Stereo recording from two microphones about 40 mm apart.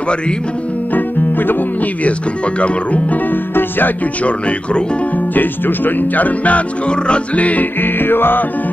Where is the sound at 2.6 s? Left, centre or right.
Left.